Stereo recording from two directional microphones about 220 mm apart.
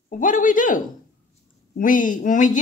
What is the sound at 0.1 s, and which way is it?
Speech, 35° left (ahead or behind).